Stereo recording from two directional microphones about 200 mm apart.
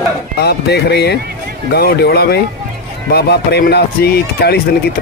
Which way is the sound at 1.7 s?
55° left (ahead or behind).